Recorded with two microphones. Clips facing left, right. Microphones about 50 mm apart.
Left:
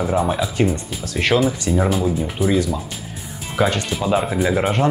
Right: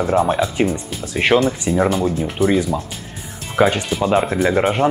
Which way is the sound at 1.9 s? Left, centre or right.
Centre.